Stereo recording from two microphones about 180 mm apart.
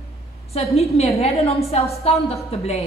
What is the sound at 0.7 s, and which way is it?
A woman's voice, 35° left (ahead or behind).